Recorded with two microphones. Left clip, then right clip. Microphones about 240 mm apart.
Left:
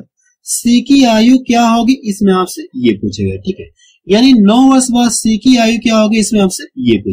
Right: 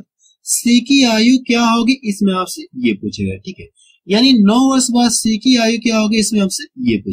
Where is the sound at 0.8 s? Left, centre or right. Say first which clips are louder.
Left 5 dB; centre.